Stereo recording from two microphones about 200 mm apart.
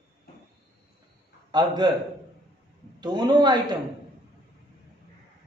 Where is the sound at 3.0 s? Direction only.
20° right (ahead or behind).